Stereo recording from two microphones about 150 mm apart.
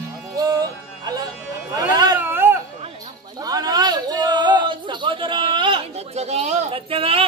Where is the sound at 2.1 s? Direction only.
15° right (ahead or behind).